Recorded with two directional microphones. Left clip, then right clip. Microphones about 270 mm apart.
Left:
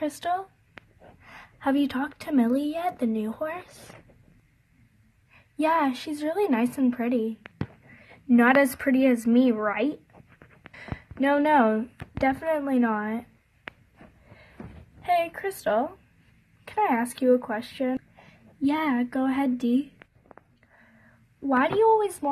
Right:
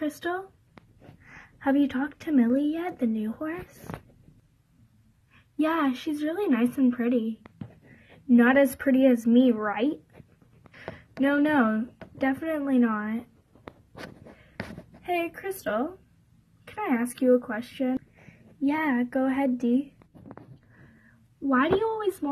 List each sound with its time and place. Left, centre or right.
1.3 s speech: centre
5.6 s speech: centre
8.3 s speech: centre
15.3 s speech: centre
21.5 s speech: centre